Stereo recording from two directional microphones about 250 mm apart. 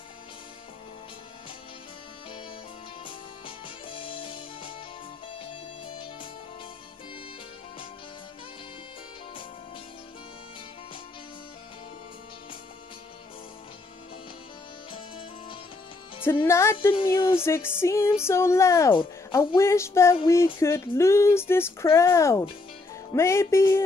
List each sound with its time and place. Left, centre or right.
3.1 s music: centre
14.9 s music: left
16.2 s speech: centre